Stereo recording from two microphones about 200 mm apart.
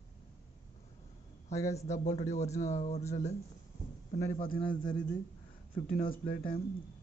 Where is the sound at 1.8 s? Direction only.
35° left (ahead or behind).